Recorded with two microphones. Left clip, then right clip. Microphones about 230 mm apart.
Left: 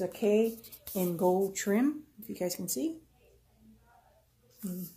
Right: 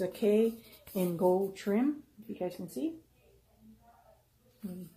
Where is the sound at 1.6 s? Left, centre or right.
Left.